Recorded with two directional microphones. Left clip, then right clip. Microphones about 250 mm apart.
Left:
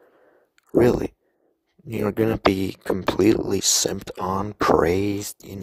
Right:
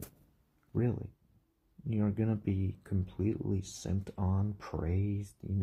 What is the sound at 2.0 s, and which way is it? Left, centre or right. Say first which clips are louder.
Speech: left 19 dB; left.